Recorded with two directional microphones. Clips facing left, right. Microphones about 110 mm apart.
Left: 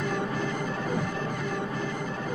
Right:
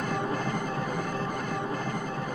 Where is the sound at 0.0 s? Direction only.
45° right (ahead or behind).